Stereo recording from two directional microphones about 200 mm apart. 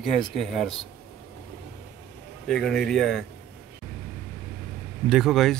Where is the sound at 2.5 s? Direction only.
Centre (ahead or behind).